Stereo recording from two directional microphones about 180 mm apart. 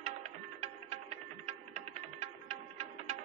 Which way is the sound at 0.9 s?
40° right (ahead or behind).